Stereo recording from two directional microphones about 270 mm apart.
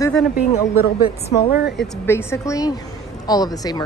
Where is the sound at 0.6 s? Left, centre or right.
Centre.